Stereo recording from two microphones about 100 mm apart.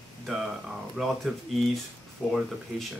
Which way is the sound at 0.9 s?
Centre (ahead or behind).